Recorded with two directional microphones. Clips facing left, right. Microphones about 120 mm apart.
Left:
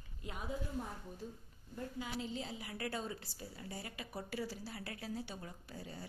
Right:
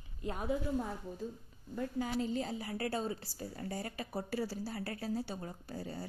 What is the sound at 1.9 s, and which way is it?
A woman's voice, 45° right (ahead or behind).